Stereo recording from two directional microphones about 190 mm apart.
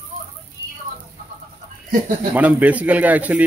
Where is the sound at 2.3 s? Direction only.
10° right (ahead or behind).